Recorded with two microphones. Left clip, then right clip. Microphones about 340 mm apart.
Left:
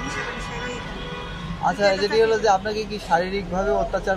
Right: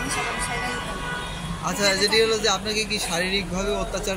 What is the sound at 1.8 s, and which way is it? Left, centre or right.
A man's voice, left.